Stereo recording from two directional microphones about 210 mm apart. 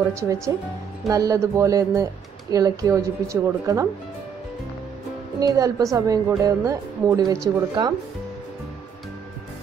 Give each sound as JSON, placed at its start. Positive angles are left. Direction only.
{"t": 0.1, "sound": "a woman's voice", "side_deg": -15}
{"t": 5.4, "sound": "a woman's voice", "side_deg": -15}